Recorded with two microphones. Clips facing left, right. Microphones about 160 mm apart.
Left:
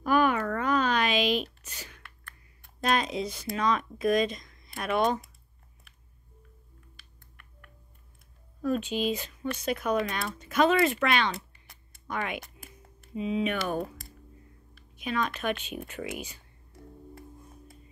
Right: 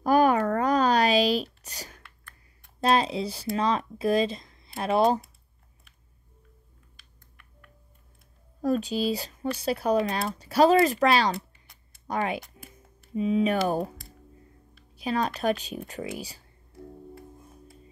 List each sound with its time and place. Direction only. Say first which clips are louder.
0.0 s a sound: right 4 dB; 40° right (ahead or behind)
2.8 s speech: right 4 dB; 30° right (ahead or behind)
8.5 s speech: right 3 dB; 40° right (ahead or behind)
15.0 s speech: right 3 dB; 35° right (ahead or behind)